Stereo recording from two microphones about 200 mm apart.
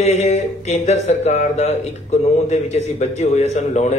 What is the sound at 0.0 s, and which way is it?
Speech, 35° left (ahead or behind).